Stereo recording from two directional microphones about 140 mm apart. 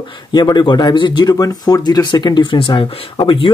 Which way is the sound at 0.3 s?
30° left (ahead or behind).